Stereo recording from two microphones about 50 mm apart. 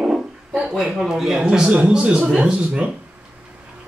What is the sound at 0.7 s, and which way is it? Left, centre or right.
A man's voice, centre.